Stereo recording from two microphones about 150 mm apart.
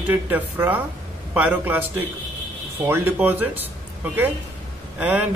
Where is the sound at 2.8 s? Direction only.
15° right (ahead or behind).